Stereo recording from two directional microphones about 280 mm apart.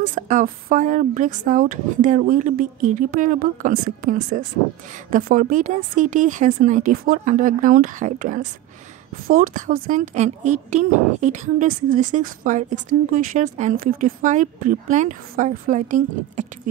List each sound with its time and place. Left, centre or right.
0.0 s speech: right